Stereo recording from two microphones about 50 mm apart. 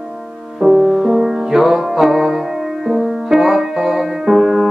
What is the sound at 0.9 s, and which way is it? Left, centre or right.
Music, centre.